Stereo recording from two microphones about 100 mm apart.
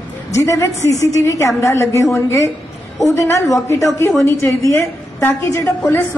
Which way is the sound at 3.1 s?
30° left (ahead or behind).